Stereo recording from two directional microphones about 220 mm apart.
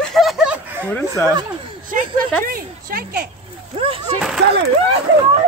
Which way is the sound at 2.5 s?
40° right (ahead or behind).